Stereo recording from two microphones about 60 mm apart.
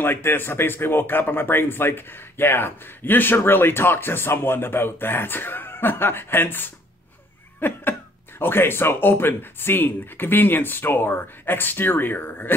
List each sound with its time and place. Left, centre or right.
0.0 s speech: left